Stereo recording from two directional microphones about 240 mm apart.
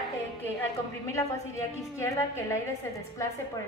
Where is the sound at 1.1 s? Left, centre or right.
Centre.